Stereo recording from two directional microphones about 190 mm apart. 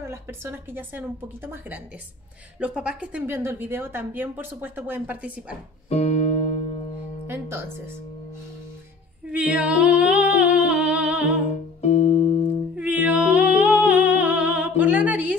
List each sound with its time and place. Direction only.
0.0 s a woman's voice: 15° right (ahead or behind)
5.9 s music: 35° left (ahead or behind)
7.2 s speech: 15° right (ahead or behind)
9.3 s humming: 5° right (ahead or behind)
11.8 s music: 35° left (ahead or behind)
12.7 s music: 5° right (ahead or behind)